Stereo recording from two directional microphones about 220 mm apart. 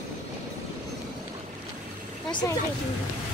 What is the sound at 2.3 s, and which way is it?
Speech, 20° left (ahead or behind).